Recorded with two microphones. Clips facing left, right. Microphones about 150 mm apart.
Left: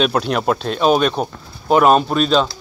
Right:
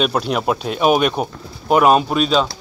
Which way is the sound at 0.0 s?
5° right (ahead or behind).